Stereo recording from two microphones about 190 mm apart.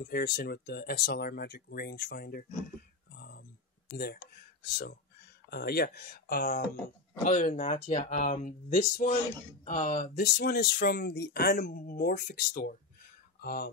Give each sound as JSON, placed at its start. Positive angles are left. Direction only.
{"t": 0.0, "sound": "speech", "side_deg": 55}
{"t": 5.5, "sound": "speech", "side_deg": 55}